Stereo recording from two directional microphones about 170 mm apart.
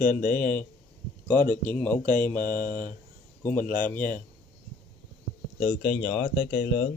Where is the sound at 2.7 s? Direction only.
50° left (ahead or behind).